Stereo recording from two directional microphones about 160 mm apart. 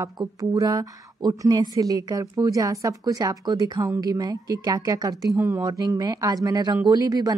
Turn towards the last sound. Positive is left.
turn(degrees=-25)  # may be behind; listen again after turning